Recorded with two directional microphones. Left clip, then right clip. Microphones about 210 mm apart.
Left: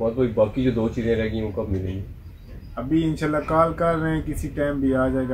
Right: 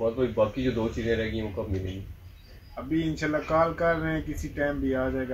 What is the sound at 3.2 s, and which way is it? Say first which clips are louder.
Speech: left 3 dB; 10° left (ahead or behind).